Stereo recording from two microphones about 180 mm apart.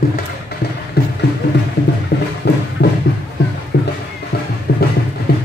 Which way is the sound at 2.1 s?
65° left (ahead or behind).